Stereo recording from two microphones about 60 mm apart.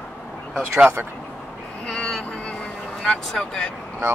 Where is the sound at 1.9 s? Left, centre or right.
Centre.